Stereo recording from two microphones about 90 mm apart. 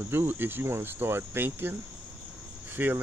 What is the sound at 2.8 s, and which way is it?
Speech, 20° right (ahead or behind).